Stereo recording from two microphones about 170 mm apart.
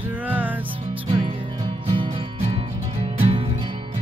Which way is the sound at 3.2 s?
35° right (ahead or behind).